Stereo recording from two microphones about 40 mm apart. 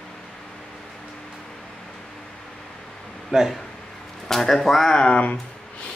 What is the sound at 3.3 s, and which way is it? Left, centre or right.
Speech, centre.